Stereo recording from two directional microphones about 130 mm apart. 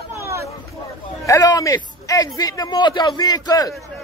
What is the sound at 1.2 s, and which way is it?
A man's voice, 25° left (ahead or behind).